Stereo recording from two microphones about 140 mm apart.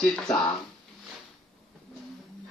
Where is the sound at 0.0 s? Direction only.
5° left (ahead or behind).